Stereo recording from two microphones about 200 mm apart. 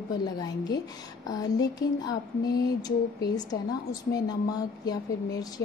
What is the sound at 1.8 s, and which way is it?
A woman's voice, 20° left (ahead or behind).